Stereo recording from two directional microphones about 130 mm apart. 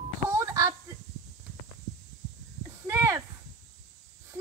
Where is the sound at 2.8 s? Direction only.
20° right (ahead or behind).